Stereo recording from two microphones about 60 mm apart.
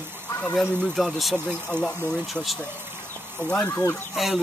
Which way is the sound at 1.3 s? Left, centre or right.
Centre.